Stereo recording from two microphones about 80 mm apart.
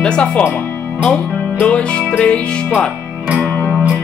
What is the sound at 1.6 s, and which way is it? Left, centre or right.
Speech, centre.